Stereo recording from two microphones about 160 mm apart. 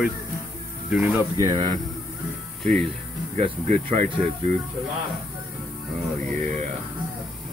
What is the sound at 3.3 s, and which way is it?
Speech, 40° right (ahead or behind).